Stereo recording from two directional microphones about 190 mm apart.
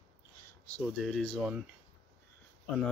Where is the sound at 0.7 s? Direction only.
5° left (ahead or behind).